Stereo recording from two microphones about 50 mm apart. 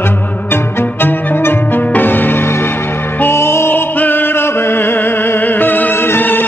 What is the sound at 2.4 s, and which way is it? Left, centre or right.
Music, left.